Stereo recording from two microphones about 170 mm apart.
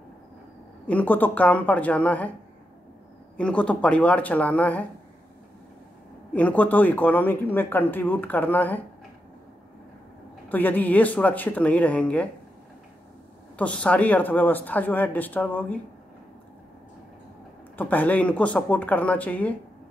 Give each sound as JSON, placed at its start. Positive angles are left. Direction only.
{"t": 0.8, "sound": "speech", "side_deg": 10}
{"t": 3.3, "sound": "speech", "side_deg": 5}
{"t": 6.3, "sound": "speech", "side_deg": 10}
{"t": 10.5, "sound": "speech", "side_deg": 10}
{"t": 13.6, "sound": "speech", "side_deg": 5}
{"t": 17.7, "sound": "speech", "side_deg": 10}